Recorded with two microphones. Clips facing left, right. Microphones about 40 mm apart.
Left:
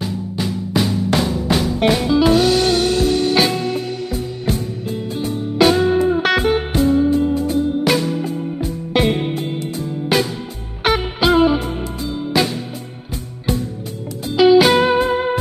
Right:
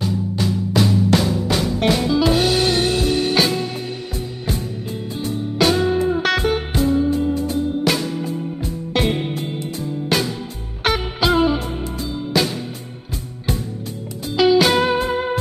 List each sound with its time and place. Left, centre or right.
0.4 s music: centre
2.5 s music: left
3.3 s music: centre
14.3 s music: centre